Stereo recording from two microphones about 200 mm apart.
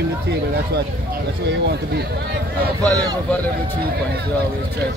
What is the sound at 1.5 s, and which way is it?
Speech, 55° right (ahead or behind).